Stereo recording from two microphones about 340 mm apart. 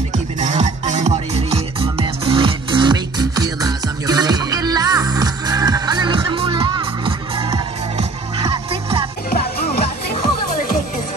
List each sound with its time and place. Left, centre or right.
0.4 s music: right